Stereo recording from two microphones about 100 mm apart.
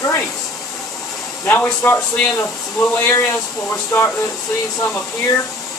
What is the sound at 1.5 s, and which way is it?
Speech, 20° left (ahead or behind).